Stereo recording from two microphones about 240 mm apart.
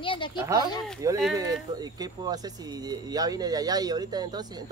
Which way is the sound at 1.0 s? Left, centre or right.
Centre.